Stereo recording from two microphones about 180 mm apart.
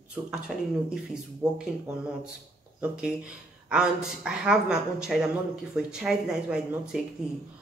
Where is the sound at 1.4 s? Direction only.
20° right (ahead or behind).